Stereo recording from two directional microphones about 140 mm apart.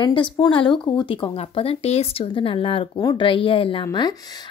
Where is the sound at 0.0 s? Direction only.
35° left (ahead or behind).